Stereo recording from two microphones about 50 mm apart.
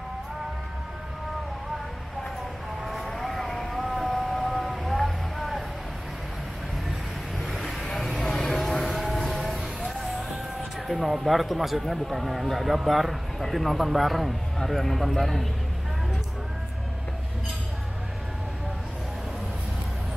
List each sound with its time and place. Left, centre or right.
2.9 s vehicle: centre
7.4 s vehicle: centre
8.5 s music: centre
10.9 s speech: centre